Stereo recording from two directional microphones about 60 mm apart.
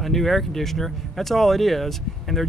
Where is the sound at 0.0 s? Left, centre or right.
Centre.